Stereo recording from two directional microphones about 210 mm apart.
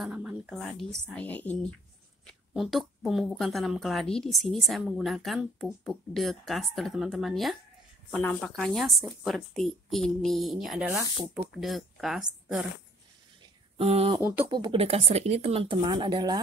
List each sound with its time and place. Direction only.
0.0 s a woman's voice: 5° right (ahead or behind)
13.7 s speech: 30° right (ahead or behind)
14.1 s speech: 10° right (ahead or behind)